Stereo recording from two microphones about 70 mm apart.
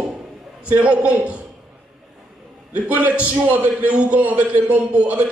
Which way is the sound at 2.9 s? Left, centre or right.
Right.